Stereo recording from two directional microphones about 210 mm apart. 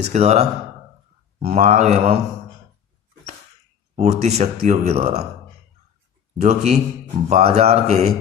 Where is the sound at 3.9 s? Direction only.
30° right (ahead or behind).